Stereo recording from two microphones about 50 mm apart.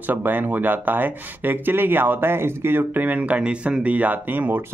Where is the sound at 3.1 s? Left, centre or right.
Right.